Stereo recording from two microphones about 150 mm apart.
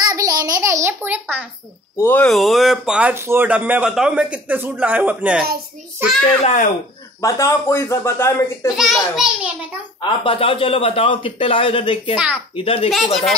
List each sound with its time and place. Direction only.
0.0 s a sound: 25° right (ahead or behind)
2.0 s speech: 10° left (ahead or behind); by 6.2 s 15° right (ahead or behind)
7.2 s speech: 20° left (ahead or behind)
8.7 s a child's voice: centre (ahead or behind)
10.0 s a man's voice: 35° left (ahead or behind)
12.9 s a child's voice: centre (ahead or behind)